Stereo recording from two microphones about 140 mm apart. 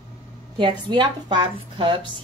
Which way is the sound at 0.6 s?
35° right (ahead or behind).